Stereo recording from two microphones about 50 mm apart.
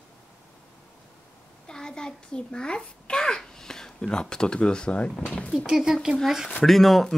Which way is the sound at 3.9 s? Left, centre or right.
Centre.